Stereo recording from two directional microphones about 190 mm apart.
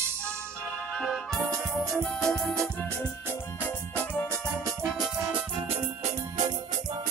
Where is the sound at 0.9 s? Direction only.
Centre (ahead or behind).